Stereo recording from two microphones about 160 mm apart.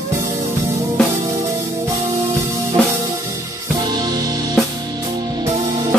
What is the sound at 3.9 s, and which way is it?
Music, 25° right (ahead or behind).